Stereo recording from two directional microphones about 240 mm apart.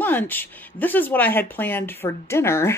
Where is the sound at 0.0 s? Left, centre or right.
Centre.